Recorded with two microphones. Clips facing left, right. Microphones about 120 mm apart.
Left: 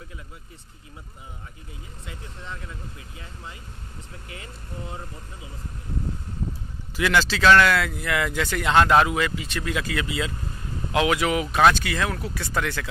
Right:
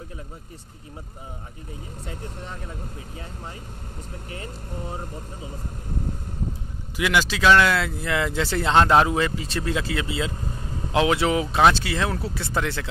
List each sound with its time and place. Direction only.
2.0 s speech: 50° right (ahead or behind)
7.0 s speech: 15° right (ahead or behind)